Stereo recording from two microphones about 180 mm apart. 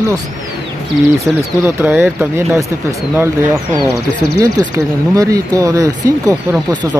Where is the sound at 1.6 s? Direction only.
10° right (ahead or behind).